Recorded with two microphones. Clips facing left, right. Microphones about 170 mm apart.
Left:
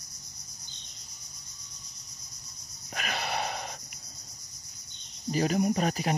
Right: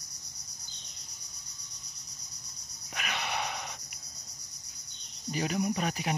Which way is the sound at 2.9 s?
40° left (ahead or behind).